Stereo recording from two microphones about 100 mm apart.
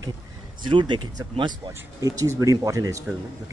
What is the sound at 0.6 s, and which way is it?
Speech, 50° right (ahead or behind).